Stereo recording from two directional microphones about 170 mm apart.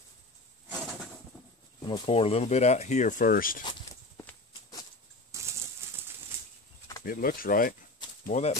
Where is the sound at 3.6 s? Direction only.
25° left (ahead or behind).